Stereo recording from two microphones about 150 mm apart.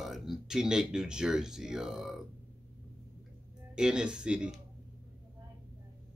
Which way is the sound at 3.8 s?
5° right (ahead or behind).